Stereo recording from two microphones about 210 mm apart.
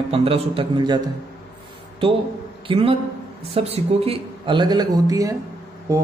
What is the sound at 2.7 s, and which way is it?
A man's voice, 25° right (ahead or behind).